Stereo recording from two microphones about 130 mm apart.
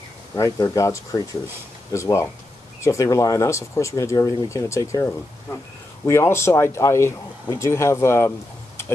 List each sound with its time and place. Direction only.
0.4 s speech: 25° left (ahead or behind)